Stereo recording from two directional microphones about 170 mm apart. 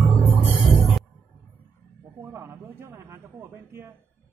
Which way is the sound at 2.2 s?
15° right (ahead or behind).